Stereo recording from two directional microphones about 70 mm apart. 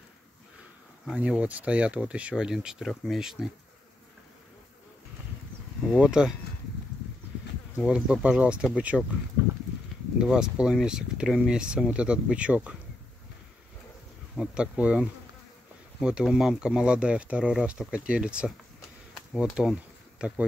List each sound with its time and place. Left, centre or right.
1.1 s speech: centre
5.9 s speech: centre
7.8 s speech: centre
10.2 s speech: centre
14.3 s speech: centre
14.6 s speech: centre